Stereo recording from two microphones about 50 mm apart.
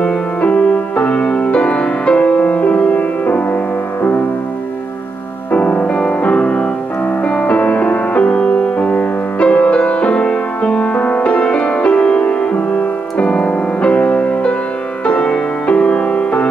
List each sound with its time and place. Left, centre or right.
0.0 s music: left
5.5 s music: left